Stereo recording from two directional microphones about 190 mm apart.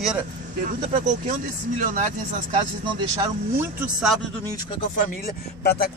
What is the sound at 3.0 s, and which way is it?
Speech, 20° right (ahead or behind).